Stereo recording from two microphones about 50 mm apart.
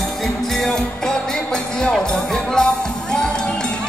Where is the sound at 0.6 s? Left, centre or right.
Centre.